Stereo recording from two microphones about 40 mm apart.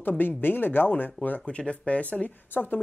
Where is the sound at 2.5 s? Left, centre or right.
Left.